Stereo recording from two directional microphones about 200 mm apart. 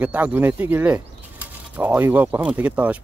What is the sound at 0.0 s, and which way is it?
Speech, 5° right (ahead or behind).